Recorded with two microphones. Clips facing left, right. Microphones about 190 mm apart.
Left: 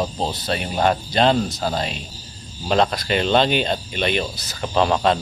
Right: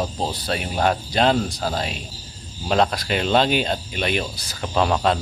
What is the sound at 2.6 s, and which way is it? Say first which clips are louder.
Speech: left 1 dB; 5° right (ahead or behind).